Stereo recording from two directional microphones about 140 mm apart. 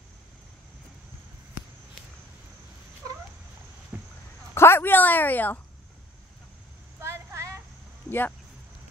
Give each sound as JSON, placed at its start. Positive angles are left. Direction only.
{"t": 3.9, "sound": "a sound", "side_deg": -15}
{"t": 4.6, "sound": "a woman's voice", "side_deg": 15}
{"t": 7.0, "sound": "vehicle", "side_deg": -20}
{"t": 8.1, "sound": "speech", "side_deg": 15}